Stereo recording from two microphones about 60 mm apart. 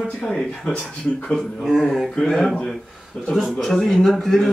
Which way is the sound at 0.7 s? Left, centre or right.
Centre.